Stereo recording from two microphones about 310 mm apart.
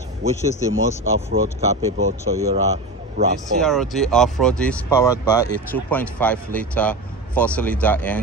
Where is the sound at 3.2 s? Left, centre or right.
Right.